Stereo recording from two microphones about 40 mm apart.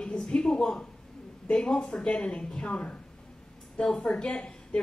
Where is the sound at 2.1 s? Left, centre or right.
Left.